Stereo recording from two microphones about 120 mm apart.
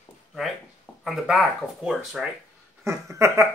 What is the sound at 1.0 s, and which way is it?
Speech, 5° right (ahead or behind).